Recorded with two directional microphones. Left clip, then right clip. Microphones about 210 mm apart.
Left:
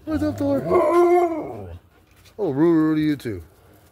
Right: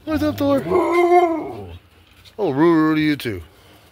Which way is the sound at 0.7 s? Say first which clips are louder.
Even; 15° left (ahead or behind).